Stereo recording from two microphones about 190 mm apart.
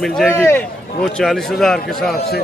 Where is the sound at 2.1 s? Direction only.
55° left (ahead or behind).